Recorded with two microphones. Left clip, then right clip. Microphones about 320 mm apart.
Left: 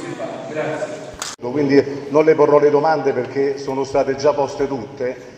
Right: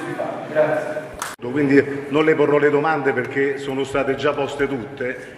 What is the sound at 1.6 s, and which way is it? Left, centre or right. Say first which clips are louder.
A man's voice: left 1 dB; left.